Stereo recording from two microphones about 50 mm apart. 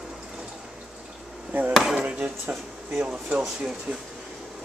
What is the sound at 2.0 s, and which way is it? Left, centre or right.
Speech, right.